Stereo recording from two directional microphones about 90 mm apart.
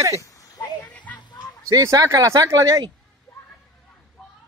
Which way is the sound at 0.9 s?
15° left (ahead or behind).